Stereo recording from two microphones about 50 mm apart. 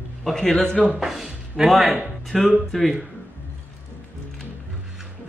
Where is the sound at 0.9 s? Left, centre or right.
Centre.